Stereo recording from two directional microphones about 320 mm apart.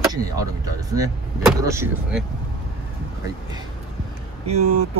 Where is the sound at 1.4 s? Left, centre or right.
Centre.